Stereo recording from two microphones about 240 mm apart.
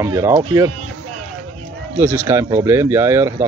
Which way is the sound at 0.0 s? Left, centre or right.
Centre.